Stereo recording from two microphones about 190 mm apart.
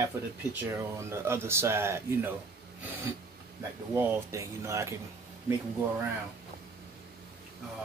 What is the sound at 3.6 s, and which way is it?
Speech, 15° right (ahead or behind).